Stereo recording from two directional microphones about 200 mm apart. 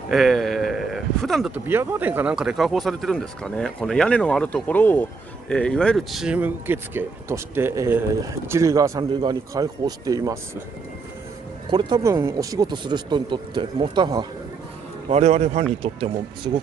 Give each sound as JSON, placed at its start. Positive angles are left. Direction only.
{"t": 0.1, "sound": "speech", "side_deg": 0}
{"t": 11.7, "sound": "speech", "side_deg": -20}
{"t": 15.0, "sound": "a man's voice", "side_deg": -35}